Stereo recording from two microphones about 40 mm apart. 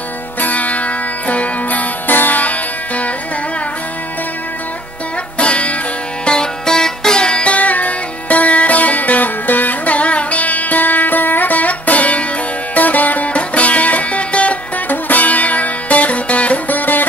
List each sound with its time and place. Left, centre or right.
0.4 s music: left
2.0 s music: left
2.4 s music: left
5.4 s music: left
7.5 s music: left
14.9 s music: left
16.6 s music: left